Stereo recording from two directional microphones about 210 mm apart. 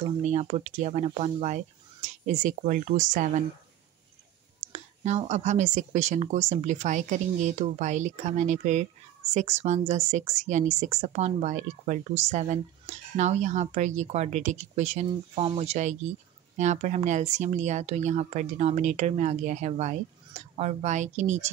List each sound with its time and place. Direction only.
0.2 s speech: 30° right (ahead or behind)
4.7 s speech: 35° right (ahead or behind)